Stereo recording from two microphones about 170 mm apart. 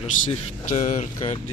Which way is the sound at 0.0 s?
40° left (ahead or behind).